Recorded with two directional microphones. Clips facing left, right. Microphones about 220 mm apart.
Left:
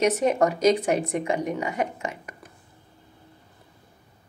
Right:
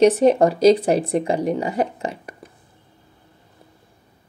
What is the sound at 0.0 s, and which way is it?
A woman's voice, 30° right (ahead or behind).